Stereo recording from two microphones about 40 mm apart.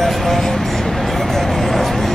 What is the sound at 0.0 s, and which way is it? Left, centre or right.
Vehicle, centre.